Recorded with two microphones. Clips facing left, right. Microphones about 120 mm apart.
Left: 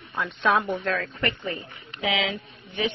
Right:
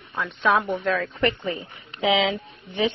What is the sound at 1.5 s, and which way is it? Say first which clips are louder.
Speech: right 1 dB; 25° right (ahead or behind).